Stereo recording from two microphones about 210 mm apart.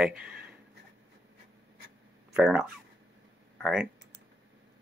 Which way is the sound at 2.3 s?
5° right (ahead or behind).